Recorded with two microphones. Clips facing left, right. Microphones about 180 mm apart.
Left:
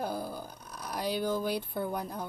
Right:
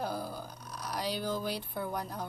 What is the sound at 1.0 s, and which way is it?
Speech, 50° left (ahead or behind).